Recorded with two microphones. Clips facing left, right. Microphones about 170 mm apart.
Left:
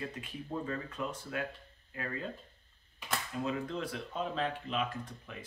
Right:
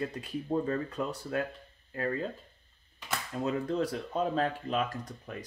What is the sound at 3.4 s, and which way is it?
Speech, 40° right (ahead or behind).